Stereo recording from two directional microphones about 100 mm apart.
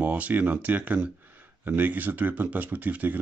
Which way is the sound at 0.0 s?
15° right (ahead or behind).